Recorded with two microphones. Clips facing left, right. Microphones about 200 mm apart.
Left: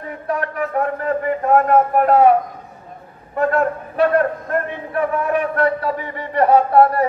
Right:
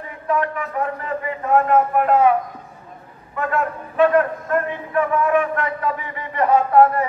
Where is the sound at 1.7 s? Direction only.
40° left (ahead or behind).